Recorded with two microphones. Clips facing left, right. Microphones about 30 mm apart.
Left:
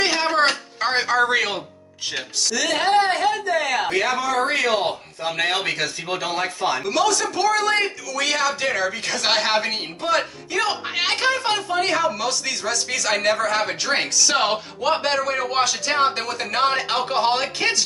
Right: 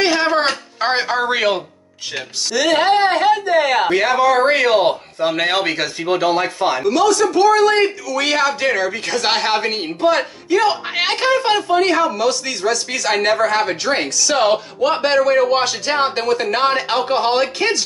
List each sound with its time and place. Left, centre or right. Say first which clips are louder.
0.0 s a sound: right 3 dB; centre
1.2 s a man's voice: right 3 dB; centre
2.5 s speech: right 5 dB; right
6.9 s a man's voice: right 8 dB; centre
14.0 s a man's voice: right 5 dB; centre